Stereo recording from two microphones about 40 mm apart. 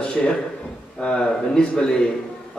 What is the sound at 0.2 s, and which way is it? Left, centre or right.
A man's voice, left.